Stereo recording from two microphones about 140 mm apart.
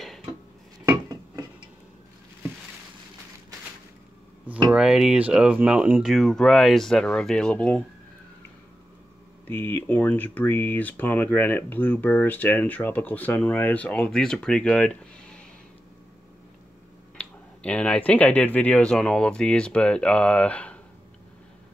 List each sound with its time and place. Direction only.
0.0 s dishes: centre (ahead or behind)
0.8 s dishes: 20° right (ahead or behind)
4.6 s speech: 5° right (ahead or behind)
6.1 s speech: 5° left (ahead or behind)
9.5 s speech: 15° left (ahead or behind)
17.2 s speech: 10° left (ahead or behind)